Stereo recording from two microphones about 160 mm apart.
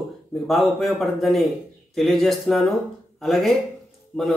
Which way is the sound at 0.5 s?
Centre (ahead or behind).